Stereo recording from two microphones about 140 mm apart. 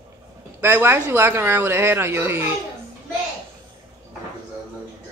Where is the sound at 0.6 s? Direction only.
15° right (ahead or behind).